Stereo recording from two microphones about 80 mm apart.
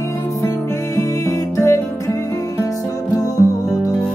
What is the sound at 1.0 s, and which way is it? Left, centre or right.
Music, left.